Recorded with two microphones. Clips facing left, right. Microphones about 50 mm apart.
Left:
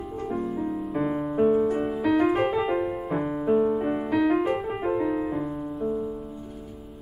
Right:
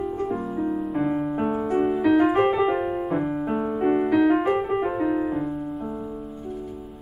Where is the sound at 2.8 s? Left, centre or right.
Right.